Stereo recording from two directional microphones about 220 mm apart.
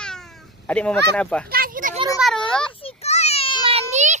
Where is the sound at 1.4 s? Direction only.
40° right (ahead or behind).